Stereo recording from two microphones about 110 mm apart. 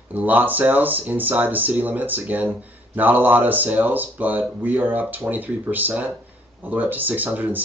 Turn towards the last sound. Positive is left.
turn(degrees=-15)  # may be behind; listen again after turning